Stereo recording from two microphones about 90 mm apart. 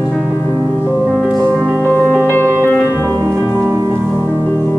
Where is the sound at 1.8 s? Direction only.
25° left (ahead or behind).